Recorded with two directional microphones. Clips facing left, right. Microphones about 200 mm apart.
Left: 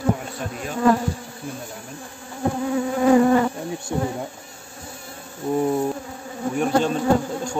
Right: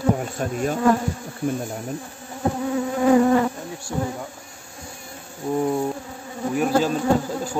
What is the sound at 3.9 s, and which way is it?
Insect, 20° left (ahead or behind).